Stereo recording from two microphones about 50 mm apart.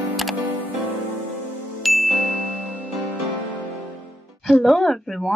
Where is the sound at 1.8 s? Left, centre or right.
Centre.